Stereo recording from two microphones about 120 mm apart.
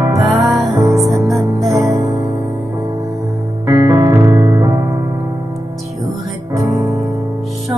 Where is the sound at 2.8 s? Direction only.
30° right (ahead or behind).